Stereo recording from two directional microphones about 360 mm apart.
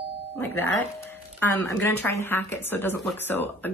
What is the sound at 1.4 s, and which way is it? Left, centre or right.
Speech, centre.